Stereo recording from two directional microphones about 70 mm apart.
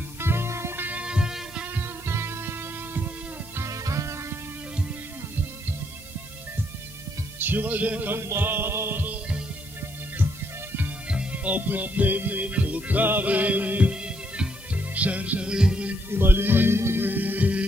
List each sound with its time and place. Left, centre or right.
0.2 s music: right
0.8 s music: centre
1.7 s music: right
3.5 s music: right
5.3 s music: right
7.3 s music: right
8.2 s music: right
11.1 s music: centre
16.1 s music: right